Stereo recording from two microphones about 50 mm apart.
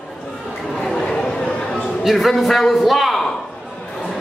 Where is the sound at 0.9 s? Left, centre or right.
Centre.